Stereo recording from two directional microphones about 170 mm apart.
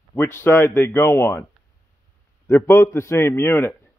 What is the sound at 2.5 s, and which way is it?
Speech, 15° left (ahead or behind).